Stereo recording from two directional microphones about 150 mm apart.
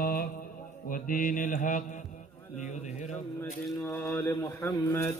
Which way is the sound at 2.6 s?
50° left (ahead or behind).